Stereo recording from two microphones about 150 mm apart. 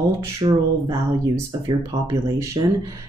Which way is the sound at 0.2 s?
20° right (ahead or behind).